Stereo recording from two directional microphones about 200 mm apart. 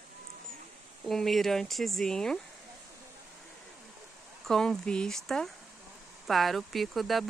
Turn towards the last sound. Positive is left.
turn(degrees=0)  # may be behind; listen again after turning